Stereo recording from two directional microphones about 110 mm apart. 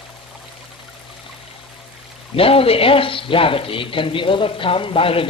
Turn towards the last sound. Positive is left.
turn(degrees=55)  # may be behind; listen again after turning